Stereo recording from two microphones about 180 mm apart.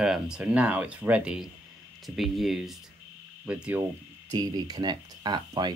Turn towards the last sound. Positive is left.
turn(degrees=-25)  # may be behind; listen again after turning